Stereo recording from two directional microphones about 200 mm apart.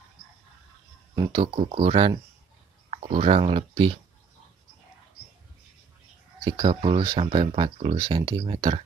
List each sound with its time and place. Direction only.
1.1 s speech: 20° right (ahead or behind)
6.4 s speech: 25° right (ahead or behind)